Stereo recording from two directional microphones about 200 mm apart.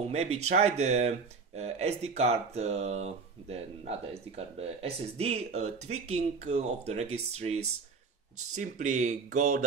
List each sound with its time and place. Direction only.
0.1 s speech: 35° right (ahead or behind)